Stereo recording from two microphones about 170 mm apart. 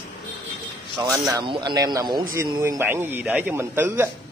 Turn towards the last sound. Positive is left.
turn(degrees=-15)  # may be behind; listen again after turning